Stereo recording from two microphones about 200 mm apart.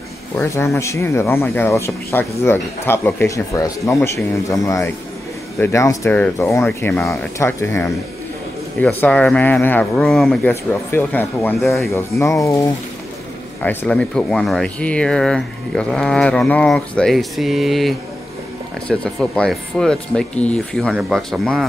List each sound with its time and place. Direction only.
0.4 s speech: 15° left (ahead or behind)
12.2 s speech: 15° left (ahead or behind)